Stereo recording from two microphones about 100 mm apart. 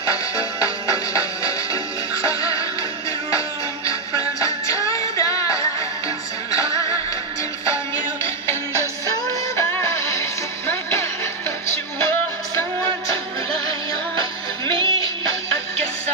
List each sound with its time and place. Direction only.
0.1 s music: 35° left (ahead or behind)
4.4 s music: 35° left (ahead or behind)
7.7 s music: 30° left (ahead or behind)
9.6 s music: 25° left (ahead or behind)
14.7 s music: 55° right (ahead or behind)